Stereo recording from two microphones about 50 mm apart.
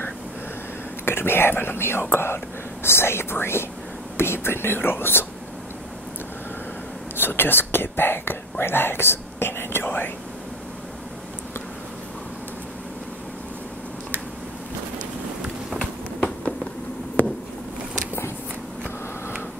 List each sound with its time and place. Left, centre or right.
1.0 s speech: left
7.2 s speech: left